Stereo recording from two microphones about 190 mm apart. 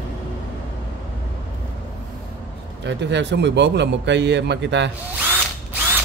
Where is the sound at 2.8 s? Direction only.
65° right (ahead or behind).